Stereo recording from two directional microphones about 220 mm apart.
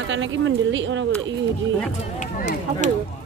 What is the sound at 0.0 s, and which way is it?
Speech, 60° right (ahead or behind).